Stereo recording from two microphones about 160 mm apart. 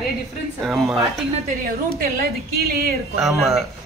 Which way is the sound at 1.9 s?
65° right (ahead or behind).